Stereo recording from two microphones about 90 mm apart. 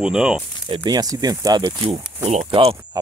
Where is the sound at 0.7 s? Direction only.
50° right (ahead or behind).